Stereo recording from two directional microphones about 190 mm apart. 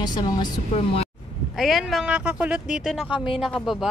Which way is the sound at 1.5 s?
Centre (ahead or behind).